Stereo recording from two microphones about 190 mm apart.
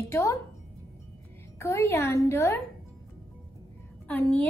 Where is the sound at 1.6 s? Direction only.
15° left (ahead or behind).